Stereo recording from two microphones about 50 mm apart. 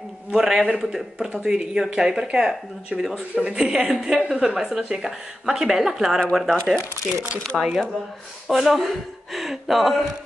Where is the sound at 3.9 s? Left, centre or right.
Centre.